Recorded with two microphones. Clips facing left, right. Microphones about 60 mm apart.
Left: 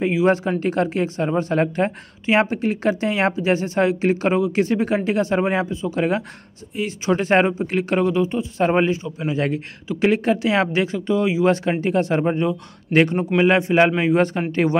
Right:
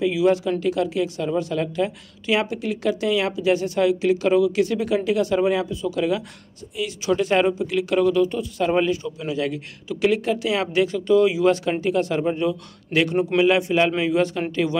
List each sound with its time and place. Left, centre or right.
0.0 s a man's voice: left